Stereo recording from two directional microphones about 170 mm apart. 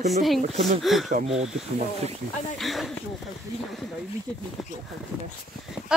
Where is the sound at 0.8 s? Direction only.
Centre (ahead or behind).